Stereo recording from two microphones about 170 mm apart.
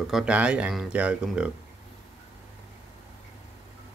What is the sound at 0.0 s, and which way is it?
Speech, 5° right (ahead or behind).